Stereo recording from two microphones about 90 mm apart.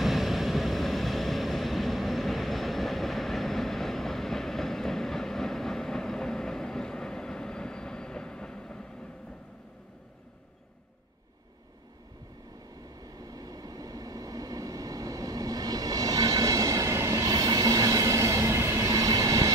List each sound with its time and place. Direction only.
0.0 s vehicle: 5° right (ahead or behind)
13.2 s train: 45° right (ahead or behind)